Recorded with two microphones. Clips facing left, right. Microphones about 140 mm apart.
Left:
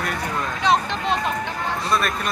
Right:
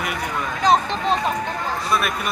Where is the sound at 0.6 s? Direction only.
40° right (ahead or behind).